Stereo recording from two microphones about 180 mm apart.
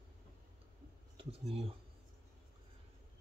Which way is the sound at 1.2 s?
30° right (ahead or behind).